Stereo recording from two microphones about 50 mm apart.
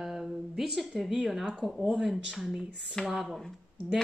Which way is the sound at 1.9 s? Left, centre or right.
Centre.